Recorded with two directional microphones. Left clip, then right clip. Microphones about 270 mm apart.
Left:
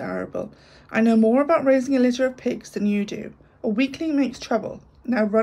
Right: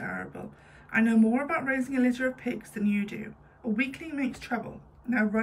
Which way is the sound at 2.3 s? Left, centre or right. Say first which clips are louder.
Left 8 dB; centre.